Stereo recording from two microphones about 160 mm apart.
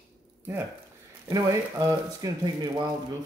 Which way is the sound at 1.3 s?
25° right (ahead or behind).